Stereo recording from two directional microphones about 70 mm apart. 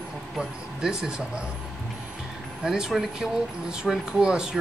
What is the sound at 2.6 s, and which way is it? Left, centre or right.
Speech, centre.